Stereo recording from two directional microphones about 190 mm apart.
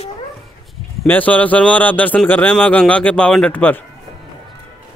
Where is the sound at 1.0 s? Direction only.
10° left (ahead or behind).